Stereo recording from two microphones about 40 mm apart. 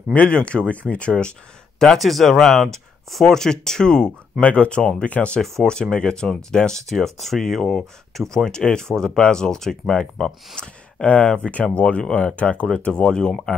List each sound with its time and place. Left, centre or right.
0.1 s speech: left
2.0 s speech: centre
4.4 s speech: left
5.4 s speech: centre
6.9 s speech: centre
8.5 s speech: left
11.1 s speech: left
12.9 s speech: centre